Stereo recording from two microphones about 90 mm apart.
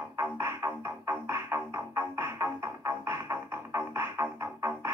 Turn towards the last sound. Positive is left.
turn(degrees=-30)  # may be behind; listen again after turning